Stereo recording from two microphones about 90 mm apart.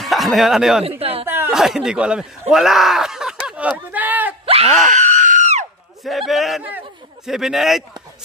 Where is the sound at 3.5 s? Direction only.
15° right (ahead or behind).